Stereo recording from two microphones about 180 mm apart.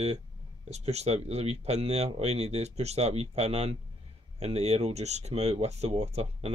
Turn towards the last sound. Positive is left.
turn(degrees=-35)  # may be behind; listen again after turning